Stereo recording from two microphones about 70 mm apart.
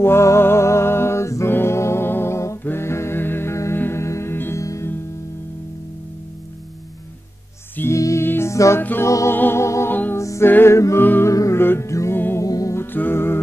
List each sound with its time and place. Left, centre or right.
0.0 s music: left
4.6 s music: left
7.9 s music: left
10.4 s music: left
11.2 s music: left
11.6 s music: left
11.9 s music: left
12.7 s music: left